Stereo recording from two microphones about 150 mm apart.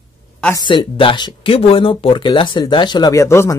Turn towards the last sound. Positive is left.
turn(degrees=20)  # may be behind; listen again after turning